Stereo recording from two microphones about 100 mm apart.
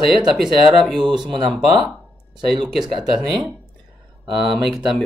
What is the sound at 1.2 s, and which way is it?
Speech, 55° right (ahead or behind).